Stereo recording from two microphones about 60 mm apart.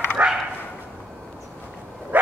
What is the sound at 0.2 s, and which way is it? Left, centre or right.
Dog, right.